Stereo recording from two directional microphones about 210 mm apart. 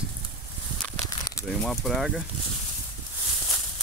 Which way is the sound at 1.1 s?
15° left (ahead or behind).